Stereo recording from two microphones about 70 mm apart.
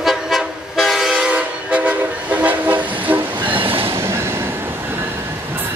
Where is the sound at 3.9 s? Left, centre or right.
Right.